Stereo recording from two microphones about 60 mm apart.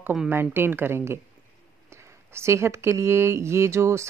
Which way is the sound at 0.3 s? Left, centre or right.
Right.